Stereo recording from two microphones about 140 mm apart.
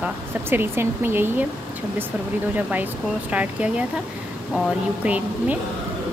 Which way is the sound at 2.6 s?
10° right (ahead or behind).